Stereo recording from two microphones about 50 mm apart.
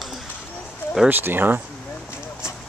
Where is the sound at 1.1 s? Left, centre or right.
Right.